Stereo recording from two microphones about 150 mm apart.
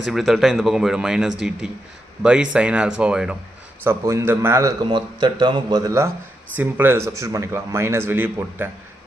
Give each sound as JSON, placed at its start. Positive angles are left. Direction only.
{"t": 0.0, "sound": "speech", "side_deg": 0}
{"t": 3.8, "sound": "speech", "side_deg": -15}
{"t": 4.8, "sound": "speech", "side_deg": -30}